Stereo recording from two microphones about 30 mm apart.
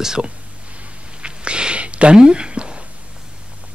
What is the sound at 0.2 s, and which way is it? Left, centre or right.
Speech, right.